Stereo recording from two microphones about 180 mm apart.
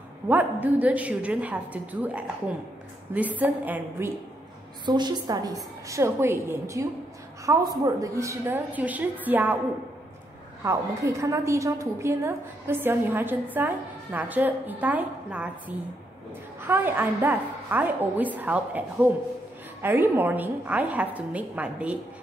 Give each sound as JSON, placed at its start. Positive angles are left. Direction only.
{"t": 0.3, "sound": "a woman's voice", "side_deg": -10}
{"t": 4.8, "sound": "a woman's voice", "side_deg": -25}
{"t": 10.6, "sound": "a woman's voice", "side_deg": -15}
{"t": 16.6, "sound": "a woman's voice", "side_deg": -10}